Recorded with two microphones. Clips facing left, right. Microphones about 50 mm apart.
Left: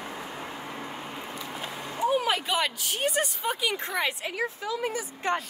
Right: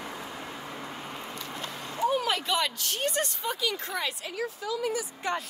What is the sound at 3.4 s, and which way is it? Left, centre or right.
A woman's voice, left.